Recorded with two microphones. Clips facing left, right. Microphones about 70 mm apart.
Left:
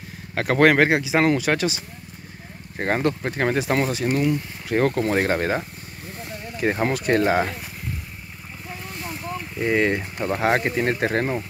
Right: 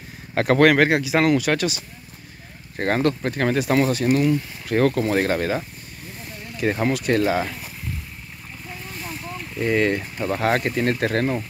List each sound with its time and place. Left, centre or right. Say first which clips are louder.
0.3 s a sound: right 4 dB; centre
0.6 s speech: left 1 dB; left
2.8 s speech: right 2 dB; centre
4.8 s speech: right 1 dB; left
9.6 s speech: right 1 dB; centre